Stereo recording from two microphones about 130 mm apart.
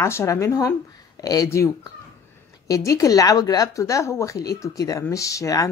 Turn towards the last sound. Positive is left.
turn(degrees=25)  # may be behind; listen again after turning